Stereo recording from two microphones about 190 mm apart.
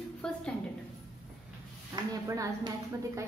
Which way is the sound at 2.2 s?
15° right (ahead or behind).